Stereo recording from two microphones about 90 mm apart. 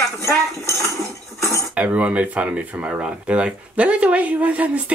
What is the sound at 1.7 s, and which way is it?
Speech, 15° right (ahead or behind).